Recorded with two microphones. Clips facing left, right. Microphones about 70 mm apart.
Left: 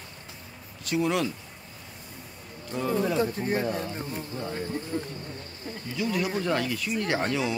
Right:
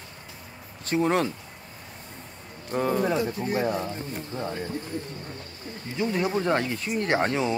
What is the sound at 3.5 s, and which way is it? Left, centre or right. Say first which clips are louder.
Speech: right 2 dB; right.